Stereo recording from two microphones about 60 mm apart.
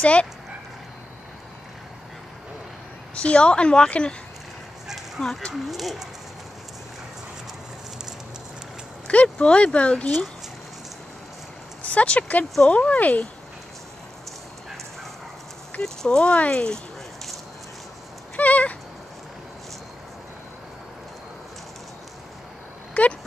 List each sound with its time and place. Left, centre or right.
0.0 s speech: centre
3.2 s speech: centre
4.8 s a sound: centre
5.2 s speech: centre
5.5 s speech: centre
9.0 s speech: left
11.8 s speech: left
15.8 s speech: centre
18.3 s a sound: left
23.0 s a sound: left